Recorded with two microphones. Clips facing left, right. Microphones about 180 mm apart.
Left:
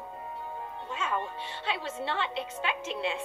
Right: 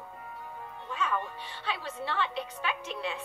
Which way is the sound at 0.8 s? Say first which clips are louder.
Right 1 dB; 25° left (ahead or behind).